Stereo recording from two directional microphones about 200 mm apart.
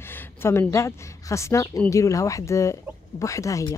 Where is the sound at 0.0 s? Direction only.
10° left (ahead or behind).